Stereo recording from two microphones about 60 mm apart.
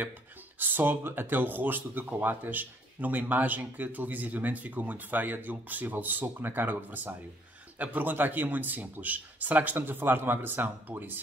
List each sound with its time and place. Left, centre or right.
0.6 s speech: right